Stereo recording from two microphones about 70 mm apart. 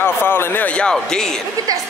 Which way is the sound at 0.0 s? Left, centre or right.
Left.